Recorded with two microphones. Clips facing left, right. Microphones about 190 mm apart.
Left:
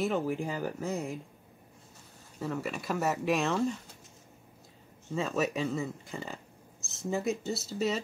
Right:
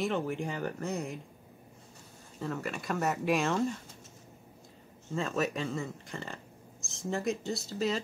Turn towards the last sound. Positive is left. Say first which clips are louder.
# left 1 dB
turn(degrees=0)  # may be behind; listen again after turning